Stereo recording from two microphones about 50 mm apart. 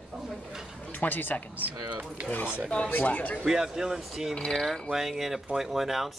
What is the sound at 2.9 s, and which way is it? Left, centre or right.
Speech, left.